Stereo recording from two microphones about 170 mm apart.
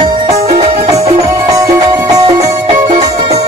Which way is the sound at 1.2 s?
20° right (ahead or behind).